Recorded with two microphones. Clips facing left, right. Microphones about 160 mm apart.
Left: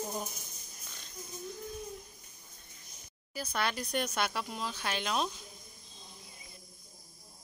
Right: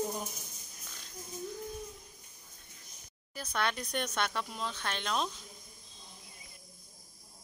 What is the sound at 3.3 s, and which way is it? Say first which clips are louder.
Speech: even; 5° left (ahead or behind).